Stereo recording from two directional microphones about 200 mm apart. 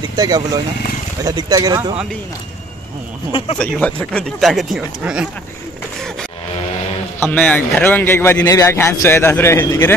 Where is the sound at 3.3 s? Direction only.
25° left (ahead or behind).